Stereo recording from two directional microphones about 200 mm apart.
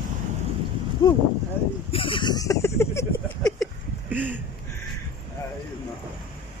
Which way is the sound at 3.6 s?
10° right (ahead or behind).